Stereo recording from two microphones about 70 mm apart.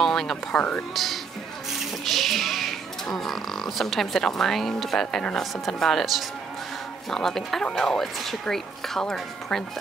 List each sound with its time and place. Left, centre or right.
0.0 s speech: centre
0.6 s speech: centre
0.9 s speech: centre
1.8 s music: centre
3.2 s speech: centre